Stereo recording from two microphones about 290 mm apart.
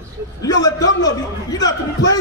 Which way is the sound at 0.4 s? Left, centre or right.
Centre.